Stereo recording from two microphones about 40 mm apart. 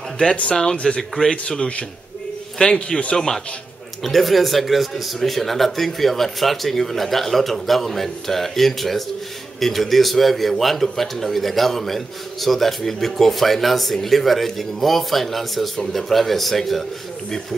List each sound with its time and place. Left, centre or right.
0.6 s speech: centre
2.6 s a man's voice: left
4.0 s speech: centre